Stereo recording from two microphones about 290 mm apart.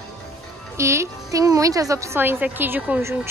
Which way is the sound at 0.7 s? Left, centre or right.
Centre.